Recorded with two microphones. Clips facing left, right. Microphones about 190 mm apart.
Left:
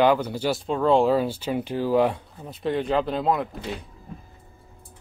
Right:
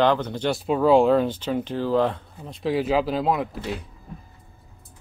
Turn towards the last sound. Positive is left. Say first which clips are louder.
# right 1 dB
turn(degrees=0)  # may be behind; listen again after turning